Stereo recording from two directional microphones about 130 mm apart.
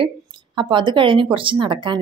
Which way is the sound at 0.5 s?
35° right (ahead or behind).